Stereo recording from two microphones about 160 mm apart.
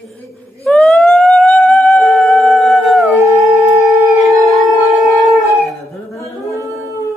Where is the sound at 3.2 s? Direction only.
20° right (ahead or behind).